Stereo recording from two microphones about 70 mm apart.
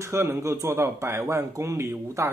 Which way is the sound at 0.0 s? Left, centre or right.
Right.